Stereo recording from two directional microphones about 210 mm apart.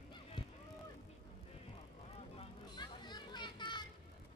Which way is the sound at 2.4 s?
20° left (ahead or behind).